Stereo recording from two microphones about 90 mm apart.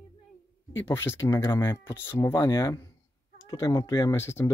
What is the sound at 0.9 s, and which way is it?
Speech, 30° left (ahead or behind).